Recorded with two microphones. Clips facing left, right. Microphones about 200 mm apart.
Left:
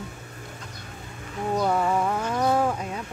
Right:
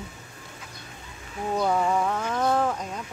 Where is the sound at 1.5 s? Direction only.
Centre (ahead or behind).